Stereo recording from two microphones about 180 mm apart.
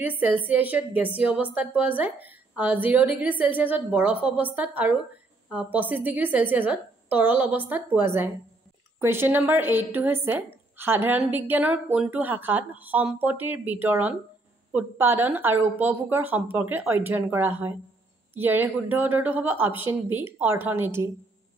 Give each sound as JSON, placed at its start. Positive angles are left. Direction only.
{"t": 0.0, "sound": "speech", "side_deg": -10}